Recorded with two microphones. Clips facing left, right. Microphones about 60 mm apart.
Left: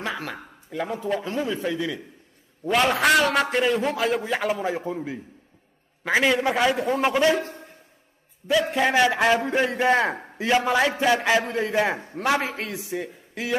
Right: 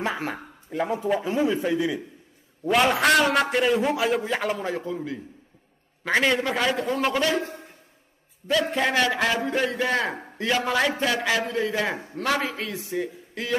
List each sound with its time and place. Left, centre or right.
0.2 s a sound: right
0.7 s a man's voice: centre
2.6 s a man's voice: centre
4.9 s a man's voice: centre
6.0 s a man's voice: centre
7.1 s a man's voice: left
8.5 s a man's voice: centre; by 10.2 s left
10.3 s a man's voice: centre
12.9 s a man's voice: centre